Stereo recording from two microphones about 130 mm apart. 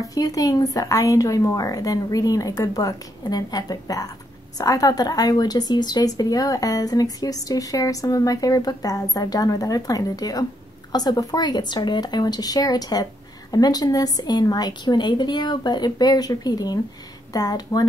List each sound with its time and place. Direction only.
0.0 s a woman's voice: 25° left (ahead or behind)